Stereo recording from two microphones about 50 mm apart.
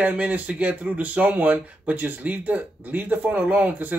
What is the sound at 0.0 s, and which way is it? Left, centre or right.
A man's voice, right.